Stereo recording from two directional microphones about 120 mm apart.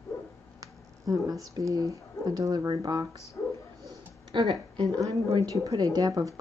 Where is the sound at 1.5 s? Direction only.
30° right (ahead or behind).